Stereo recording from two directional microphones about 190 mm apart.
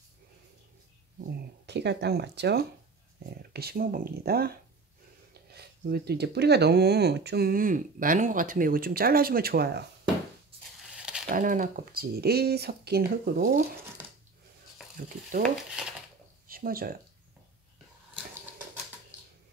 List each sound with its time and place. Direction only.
1.7 s speech: 65° right (ahead or behind)
11.0 s a sound: 5° right (ahead or behind)
11.2 s speech: 45° right (ahead or behind)
14.0 s a sound: 10° right (ahead or behind)
15.0 s speech: 45° right (ahead or behind)
16.4 s speech: 50° right (ahead or behind)